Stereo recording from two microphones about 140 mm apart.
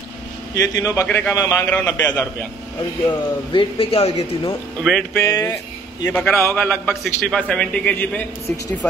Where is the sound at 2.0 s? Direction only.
10° left (ahead or behind).